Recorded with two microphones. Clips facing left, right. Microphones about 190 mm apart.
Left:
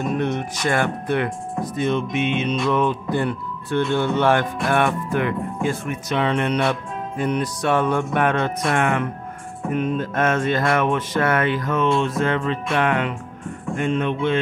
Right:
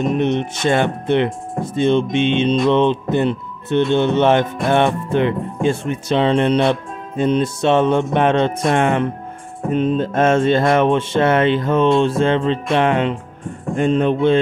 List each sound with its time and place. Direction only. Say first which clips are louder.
0.0 s speech: right 5 dB; 20° right (ahead or behind)